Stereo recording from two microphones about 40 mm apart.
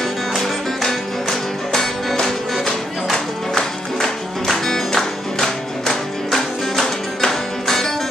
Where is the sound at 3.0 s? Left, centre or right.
Centre.